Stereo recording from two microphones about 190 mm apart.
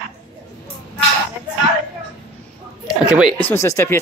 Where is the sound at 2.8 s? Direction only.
5° right (ahead or behind).